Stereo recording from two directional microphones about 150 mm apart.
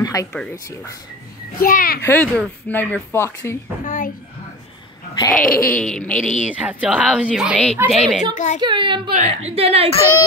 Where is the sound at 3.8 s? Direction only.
60° left (ahead or behind).